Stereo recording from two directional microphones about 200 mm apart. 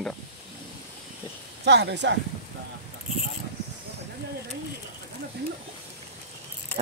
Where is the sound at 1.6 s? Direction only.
55° right (ahead or behind).